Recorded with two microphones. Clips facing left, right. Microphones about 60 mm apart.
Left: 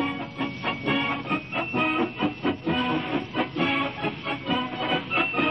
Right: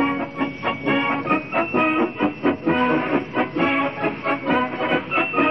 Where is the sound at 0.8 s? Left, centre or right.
Right.